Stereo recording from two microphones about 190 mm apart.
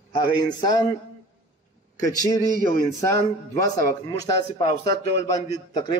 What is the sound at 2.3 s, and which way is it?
A man's voice, 15° left (ahead or behind).